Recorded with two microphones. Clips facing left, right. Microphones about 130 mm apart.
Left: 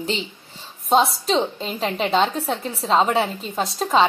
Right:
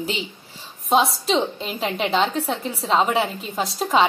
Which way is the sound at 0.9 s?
Centre (ahead or behind).